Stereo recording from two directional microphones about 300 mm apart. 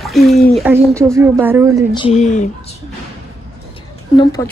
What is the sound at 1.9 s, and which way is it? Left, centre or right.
Speech, centre.